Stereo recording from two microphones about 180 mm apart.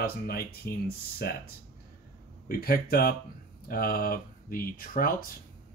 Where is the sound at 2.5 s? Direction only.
55° left (ahead or behind).